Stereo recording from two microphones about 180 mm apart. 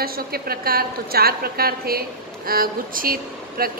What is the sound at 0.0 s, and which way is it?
A woman's voice, 55° right (ahead or behind).